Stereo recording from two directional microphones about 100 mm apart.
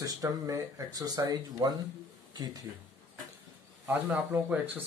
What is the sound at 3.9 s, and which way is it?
Speech, 20° right (ahead or behind).